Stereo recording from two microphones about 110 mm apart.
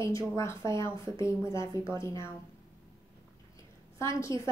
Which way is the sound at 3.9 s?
25° left (ahead or behind).